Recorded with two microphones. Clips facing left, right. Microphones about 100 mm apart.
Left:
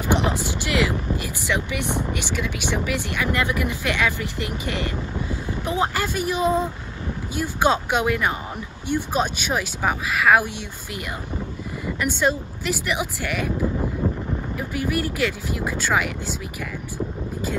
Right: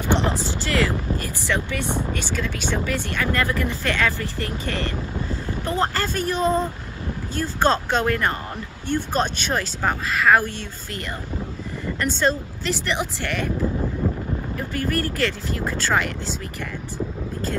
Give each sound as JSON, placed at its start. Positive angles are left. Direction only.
{"t": 0.0, "sound": "a sound", "side_deg": 15}
{"t": 1.1, "sound": "vehicle", "side_deg": 15}
{"t": 2.1, "sound": "speech", "side_deg": 15}
{"t": 11.8, "sound": "speech", "side_deg": 10}